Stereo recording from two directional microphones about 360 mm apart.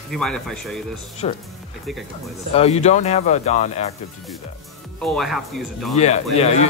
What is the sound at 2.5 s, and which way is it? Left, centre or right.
Speech, centre.